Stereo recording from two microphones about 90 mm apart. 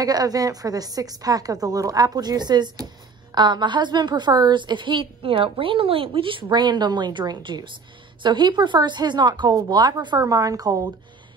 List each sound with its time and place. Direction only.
0.0 s a woman's voice: 45° right (ahead or behind)